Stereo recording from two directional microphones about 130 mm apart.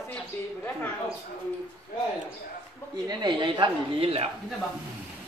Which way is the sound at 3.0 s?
35° right (ahead or behind).